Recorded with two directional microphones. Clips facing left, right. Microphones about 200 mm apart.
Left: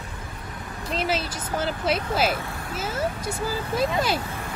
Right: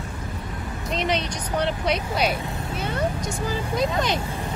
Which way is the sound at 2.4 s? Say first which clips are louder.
Right 3 dB; 20° right (ahead or behind).